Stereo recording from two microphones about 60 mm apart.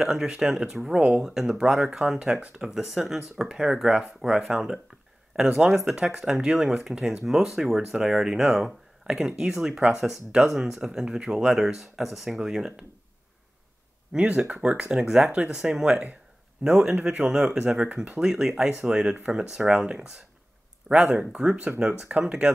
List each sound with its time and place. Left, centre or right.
0.0 s speech: centre
14.1 s speech: centre
16.9 s speech: right
17.2 s speech: centre